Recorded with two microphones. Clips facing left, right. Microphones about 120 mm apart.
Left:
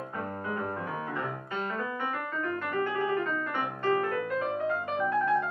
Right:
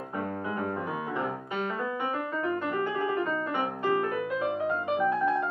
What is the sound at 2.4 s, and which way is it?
Music, 15° right (ahead or behind).